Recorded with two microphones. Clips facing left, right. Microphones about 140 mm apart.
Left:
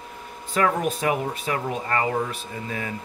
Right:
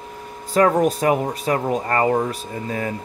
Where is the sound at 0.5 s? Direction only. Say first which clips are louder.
Right 6 dB; 40° right (ahead or behind).